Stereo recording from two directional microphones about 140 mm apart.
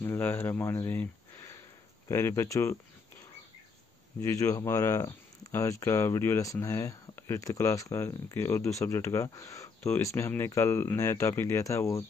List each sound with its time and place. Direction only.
0.0 s speech: 15° left (ahead or behind)
2.0 s speech: 20° left (ahead or behind)
4.2 s speech: 20° left (ahead or behind)